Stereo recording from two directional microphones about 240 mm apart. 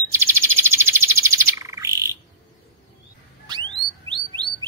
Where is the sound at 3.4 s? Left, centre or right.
Centre.